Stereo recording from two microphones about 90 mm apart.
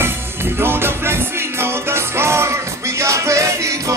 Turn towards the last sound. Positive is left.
turn(degrees=-35)  # may be behind; listen again after turning